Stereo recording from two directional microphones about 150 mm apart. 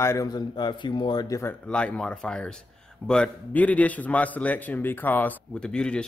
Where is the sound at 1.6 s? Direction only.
10° left (ahead or behind).